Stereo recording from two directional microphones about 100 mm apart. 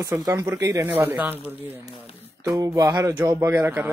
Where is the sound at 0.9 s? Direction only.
20° right (ahead or behind).